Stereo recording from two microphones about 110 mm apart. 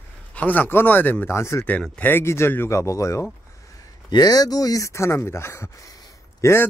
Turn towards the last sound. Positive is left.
turn(degrees=35)  # may be behind; listen again after turning